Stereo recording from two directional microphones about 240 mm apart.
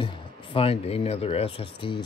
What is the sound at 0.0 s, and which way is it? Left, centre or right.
Speech, left.